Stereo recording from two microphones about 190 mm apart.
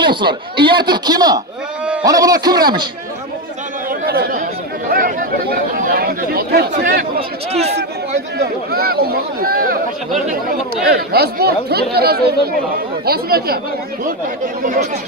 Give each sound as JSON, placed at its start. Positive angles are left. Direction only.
{"t": 0.0, "sound": "a man's voice", "side_deg": -25}
{"t": 4.0, "sound": "chatter", "side_deg": -50}
{"t": 6.7, "sound": "speech", "side_deg": -40}
{"t": 8.4, "sound": "speech", "side_deg": -55}
{"t": 11.1, "sound": "speech", "side_deg": -55}
{"t": 14.6, "sound": "speech", "side_deg": -45}